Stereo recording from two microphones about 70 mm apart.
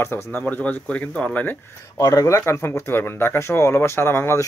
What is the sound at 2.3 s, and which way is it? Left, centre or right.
Speech, left.